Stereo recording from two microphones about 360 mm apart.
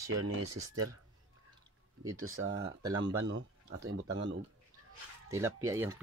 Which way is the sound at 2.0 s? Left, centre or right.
Right.